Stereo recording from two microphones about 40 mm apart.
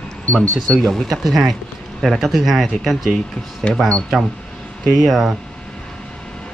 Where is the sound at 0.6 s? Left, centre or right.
Centre.